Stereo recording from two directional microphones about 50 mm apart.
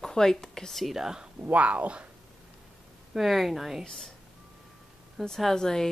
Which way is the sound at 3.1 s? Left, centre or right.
Centre.